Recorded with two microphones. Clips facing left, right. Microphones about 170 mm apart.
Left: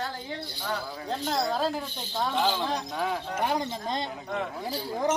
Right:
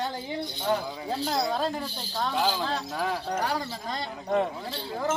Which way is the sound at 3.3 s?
20° left (ahead or behind).